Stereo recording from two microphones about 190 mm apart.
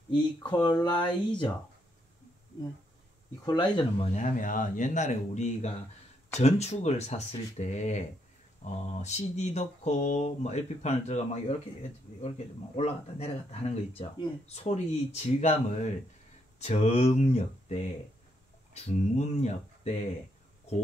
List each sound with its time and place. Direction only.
0.4 s speech: 20° left (ahead or behind)
3.4 s speech: 25° left (ahead or behind)
4.1 s speech: 45° left (ahead or behind)